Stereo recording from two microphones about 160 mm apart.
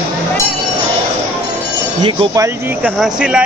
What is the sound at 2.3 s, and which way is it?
Speech, 20° right (ahead or behind).